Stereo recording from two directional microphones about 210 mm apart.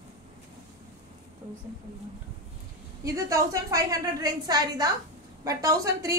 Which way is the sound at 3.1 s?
15° right (ahead or behind).